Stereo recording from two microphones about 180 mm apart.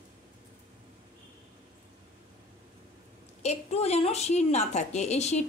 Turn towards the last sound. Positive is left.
turn(degrees=40)  # may be behind; listen again after turning